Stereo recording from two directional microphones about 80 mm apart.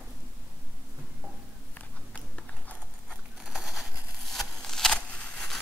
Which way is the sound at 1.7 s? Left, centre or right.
Centre.